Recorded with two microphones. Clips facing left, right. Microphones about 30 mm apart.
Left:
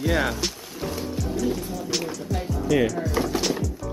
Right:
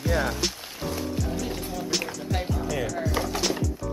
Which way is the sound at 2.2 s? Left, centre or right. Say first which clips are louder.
Even; right.